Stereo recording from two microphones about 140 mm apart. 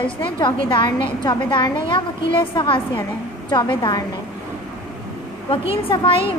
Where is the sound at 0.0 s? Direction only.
35° left (ahead or behind).